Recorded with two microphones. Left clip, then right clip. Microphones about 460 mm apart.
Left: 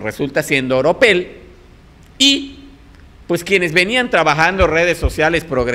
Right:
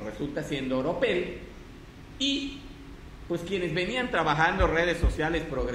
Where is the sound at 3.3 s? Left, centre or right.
Left.